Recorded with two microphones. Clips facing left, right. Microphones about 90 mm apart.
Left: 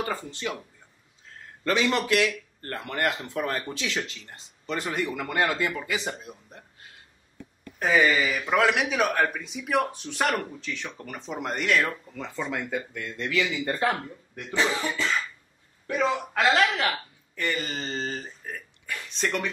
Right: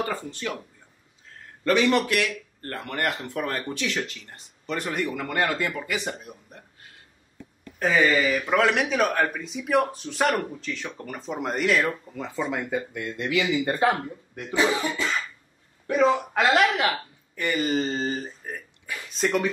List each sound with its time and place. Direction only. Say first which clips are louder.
0.3 s speech: right 1 dB; 15° left (ahead or behind)
1.7 s speech: right 3 dB; 25° left (ahead or behind)
7.8 s speech: right 1 dB; 5° left (ahead or behind)